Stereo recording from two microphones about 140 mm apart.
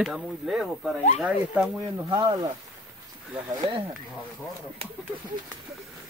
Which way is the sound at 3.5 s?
30° right (ahead or behind).